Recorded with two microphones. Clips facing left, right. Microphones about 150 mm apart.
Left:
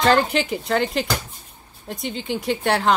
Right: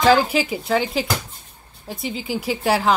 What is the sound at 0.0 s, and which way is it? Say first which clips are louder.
Speech: right 2 dB; 5° right (ahead or behind).